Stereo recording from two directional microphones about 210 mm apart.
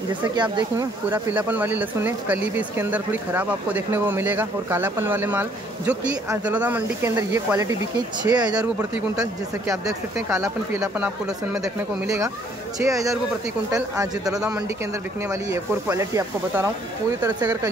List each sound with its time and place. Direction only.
0.2 s speech: 20° right (ahead or behind)
1.1 s speech: 10° right (ahead or behind)
8.5 s speech: 5° right (ahead or behind)
9.2 s speech: 15° right (ahead or behind)
12.8 s speech: 15° right (ahead or behind)